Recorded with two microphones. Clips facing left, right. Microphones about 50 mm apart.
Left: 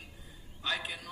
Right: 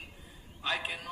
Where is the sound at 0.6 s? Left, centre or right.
Right.